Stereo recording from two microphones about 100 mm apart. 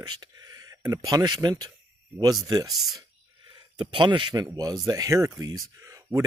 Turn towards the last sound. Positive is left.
turn(degrees=-35)  # may be behind; listen again after turning